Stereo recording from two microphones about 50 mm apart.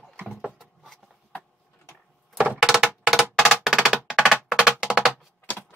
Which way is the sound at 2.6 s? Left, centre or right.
Centre.